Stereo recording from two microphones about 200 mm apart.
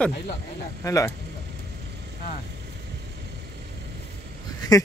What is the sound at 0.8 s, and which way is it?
Speech, 15° left (ahead or behind).